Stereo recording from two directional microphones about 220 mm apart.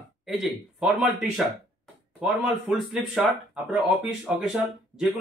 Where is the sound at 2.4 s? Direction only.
Centre (ahead or behind).